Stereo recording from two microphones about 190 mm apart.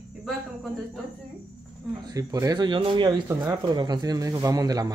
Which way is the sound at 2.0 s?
20° right (ahead or behind).